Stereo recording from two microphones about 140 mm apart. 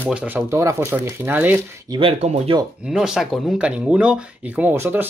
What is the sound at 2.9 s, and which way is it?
Speech, 5° right (ahead or behind).